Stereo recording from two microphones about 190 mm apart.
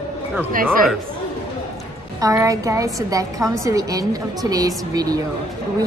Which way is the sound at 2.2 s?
15° right (ahead or behind).